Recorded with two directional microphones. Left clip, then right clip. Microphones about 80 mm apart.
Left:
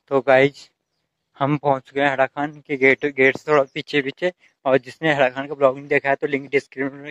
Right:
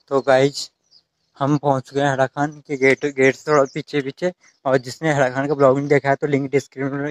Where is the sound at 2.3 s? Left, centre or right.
Centre.